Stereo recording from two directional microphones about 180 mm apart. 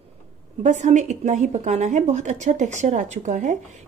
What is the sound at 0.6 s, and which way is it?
A woman's voice, 40° right (ahead or behind).